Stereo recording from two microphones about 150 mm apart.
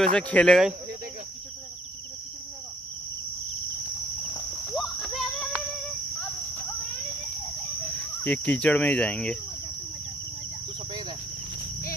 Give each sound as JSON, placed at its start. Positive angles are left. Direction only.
{"t": 0.0, "sound": "speech", "side_deg": 5}
{"t": 4.7, "sound": "cricket", "side_deg": 0}
{"t": 8.0, "sound": "speech", "side_deg": 10}
{"t": 10.9, "sound": "cricket", "side_deg": -30}